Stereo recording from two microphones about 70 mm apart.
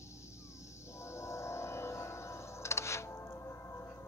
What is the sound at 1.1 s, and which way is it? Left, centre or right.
Music, left.